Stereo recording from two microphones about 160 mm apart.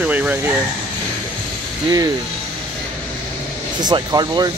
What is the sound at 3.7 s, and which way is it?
Speech, 25° right (ahead or behind).